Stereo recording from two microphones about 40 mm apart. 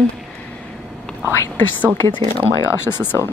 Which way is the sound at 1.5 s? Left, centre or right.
Left.